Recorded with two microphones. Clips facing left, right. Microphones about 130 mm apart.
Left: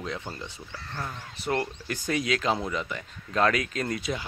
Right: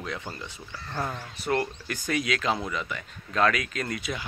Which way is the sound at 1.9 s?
30° left (ahead or behind).